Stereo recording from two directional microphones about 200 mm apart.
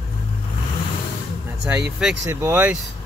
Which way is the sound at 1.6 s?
5° right (ahead or behind).